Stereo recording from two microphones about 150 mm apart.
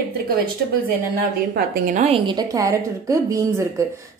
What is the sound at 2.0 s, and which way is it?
A woman's voice, 35° right (ahead or behind).